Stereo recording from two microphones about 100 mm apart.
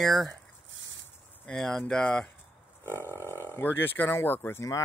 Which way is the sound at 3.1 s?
25° right (ahead or behind).